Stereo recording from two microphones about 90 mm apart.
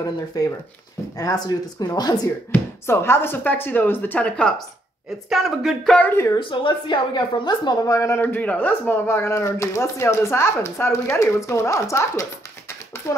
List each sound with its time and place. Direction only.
0.0 s speech: 45° left (ahead or behind)
2.5 s speech: 25° left (ahead or behind); by 4.6 s 10° left (ahead or behind)
5.3 s speech: 5° right (ahead or behind)
5.9 s speech: 15° left (ahead or behind)
6.5 s a woman's voice: 60° left (ahead or behind)
7.8 s speech: 35° left (ahead or behind)
8.2 s speech: 20° left (ahead or behind)